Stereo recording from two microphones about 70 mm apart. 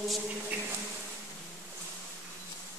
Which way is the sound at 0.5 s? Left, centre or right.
Right.